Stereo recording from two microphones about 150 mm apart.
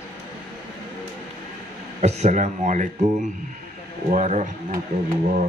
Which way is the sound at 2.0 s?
45° right (ahead or behind).